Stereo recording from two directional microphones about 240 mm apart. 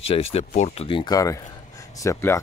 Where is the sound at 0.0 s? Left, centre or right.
Left.